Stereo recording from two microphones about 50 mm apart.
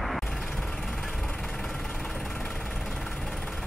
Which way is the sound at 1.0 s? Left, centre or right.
Centre.